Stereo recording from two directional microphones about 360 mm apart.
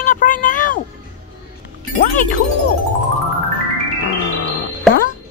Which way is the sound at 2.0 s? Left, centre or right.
Left.